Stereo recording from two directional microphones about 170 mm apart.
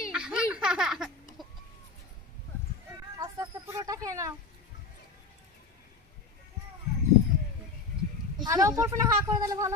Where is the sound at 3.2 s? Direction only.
20° right (ahead or behind).